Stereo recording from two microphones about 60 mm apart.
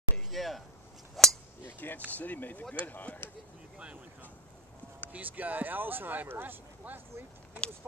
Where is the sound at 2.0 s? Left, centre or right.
Left.